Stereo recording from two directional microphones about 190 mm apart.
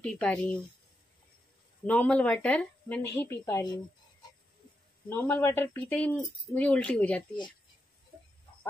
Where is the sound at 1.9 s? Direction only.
5° left (ahead or behind).